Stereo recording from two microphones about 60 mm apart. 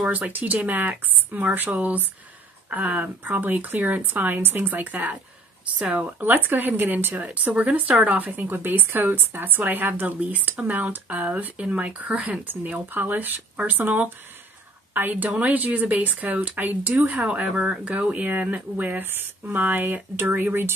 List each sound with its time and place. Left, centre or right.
0.0 s speech: centre
0.3 s a woman's voice: right
7.2 s a woman's voice: right